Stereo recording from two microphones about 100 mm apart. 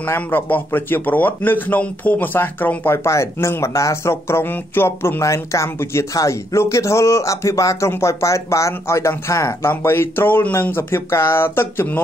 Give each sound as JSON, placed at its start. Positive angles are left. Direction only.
{"t": 0.1, "sound": "a man's voice", "side_deg": 25}